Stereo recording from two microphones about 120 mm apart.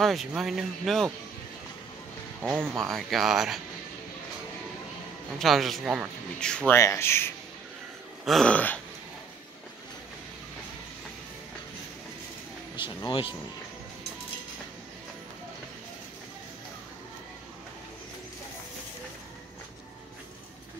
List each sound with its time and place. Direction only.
0.0 s speech: centre (ahead or behind)
2.4 s speech: 20° right (ahead or behind)
2.8 s speech: centre (ahead or behind)
5.4 s speech: centre (ahead or behind)
6.4 s a sound: 5° left (ahead or behind)
6.7 s speech: 25° left (ahead or behind)
8.3 s a sound: 5° left (ahead or behind)
13.0 s speech: 45° left (ahead or behind)